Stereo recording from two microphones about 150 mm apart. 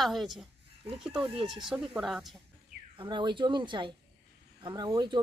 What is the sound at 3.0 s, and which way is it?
Speech, 30° right (ahead or behind).